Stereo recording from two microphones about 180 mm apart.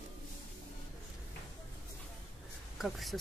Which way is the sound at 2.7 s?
Centre (ahead or behind).